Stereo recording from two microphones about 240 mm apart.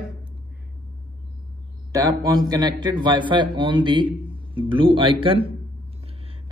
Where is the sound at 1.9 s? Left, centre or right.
Centre.